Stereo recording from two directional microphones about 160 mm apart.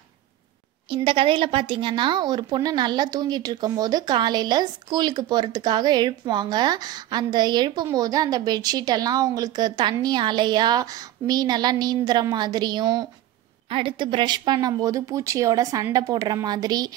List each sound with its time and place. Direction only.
0.8 s speech: 35° right (ahead or behind)